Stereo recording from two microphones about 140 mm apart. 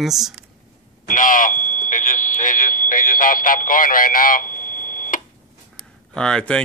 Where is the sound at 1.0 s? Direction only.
70° left (ahead or behind).